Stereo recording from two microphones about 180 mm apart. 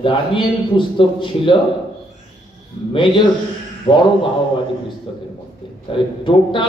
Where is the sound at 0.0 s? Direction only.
30° left (ahead or behind).